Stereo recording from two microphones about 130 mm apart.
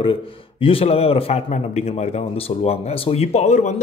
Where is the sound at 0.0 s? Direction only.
45° left (ahead or behind).